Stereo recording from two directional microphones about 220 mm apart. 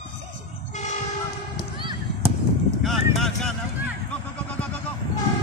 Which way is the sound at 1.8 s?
25° right (ahead or behind).